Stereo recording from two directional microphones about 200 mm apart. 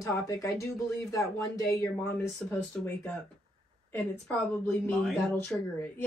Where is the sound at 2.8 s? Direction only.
10° left (ahead or behind).